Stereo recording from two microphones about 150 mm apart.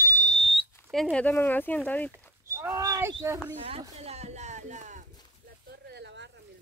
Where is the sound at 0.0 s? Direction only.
60° left (ahead or behind); by 0.7 s 45° left (ahead or behind).